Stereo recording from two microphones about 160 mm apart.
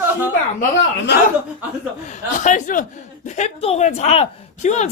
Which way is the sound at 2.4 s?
50° left (ahead or behind).